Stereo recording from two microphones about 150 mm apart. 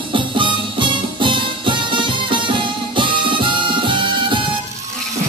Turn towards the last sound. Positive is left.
turn(degrees=-35)  # may be behind; listen again after turning